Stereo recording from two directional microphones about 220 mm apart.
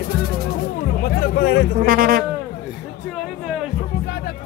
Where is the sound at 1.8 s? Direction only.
40° right (ahead or behind).